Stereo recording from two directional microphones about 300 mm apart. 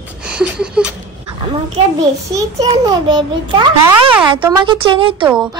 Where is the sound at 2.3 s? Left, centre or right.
Centre.